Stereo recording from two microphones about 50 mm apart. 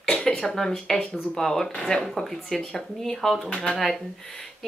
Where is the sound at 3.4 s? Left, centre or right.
Left.